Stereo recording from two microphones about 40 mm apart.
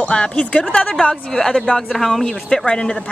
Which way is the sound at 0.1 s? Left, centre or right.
Left.